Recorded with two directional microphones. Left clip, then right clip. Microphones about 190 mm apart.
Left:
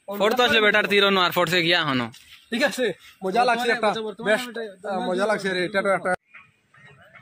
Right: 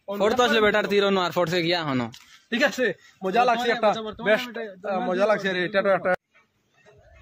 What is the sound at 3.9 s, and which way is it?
A man's voice, 15° right (ahead or behind).